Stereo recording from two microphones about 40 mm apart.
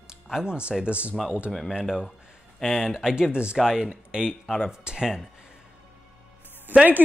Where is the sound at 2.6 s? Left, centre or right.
Centre.